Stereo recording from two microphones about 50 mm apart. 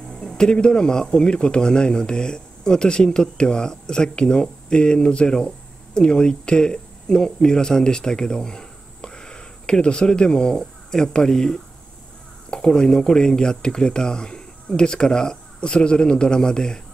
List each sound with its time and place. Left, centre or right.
0.1 s speech: centre